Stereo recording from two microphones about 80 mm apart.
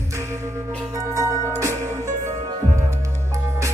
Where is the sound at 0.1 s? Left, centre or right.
Right.